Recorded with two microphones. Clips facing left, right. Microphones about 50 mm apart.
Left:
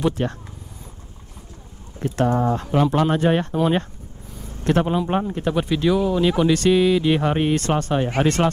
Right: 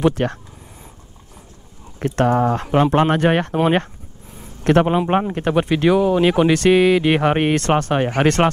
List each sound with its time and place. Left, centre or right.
0.1 s speech: right
2.0 s speech: right
4.4 s a sound: right
4.8 s speech: right
5.5 s speech: right